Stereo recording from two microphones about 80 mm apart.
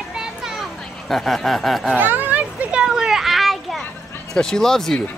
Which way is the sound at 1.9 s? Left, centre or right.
Right.